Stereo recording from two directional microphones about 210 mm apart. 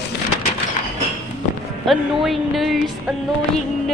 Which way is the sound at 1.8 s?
Centre (ahead or behind).